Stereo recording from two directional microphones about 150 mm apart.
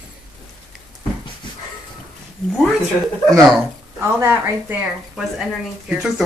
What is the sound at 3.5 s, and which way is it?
Speech, 15° right (ahead or behind).